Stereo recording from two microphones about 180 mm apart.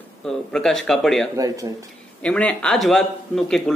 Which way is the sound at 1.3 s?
20° right (ahead or behind).